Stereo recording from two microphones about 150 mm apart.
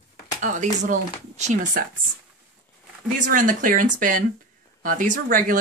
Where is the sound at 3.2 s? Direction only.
60° right (ahead or behind).